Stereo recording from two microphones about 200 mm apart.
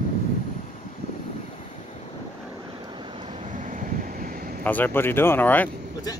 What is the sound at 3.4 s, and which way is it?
Vehicle, 40° right (ahead or behind).